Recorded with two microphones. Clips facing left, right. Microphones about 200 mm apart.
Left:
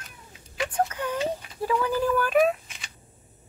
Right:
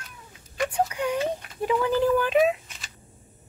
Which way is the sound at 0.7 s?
15° right (ahead or behind).